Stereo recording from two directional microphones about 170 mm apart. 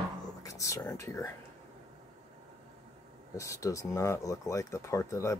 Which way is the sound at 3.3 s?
20° left (ahead or behind).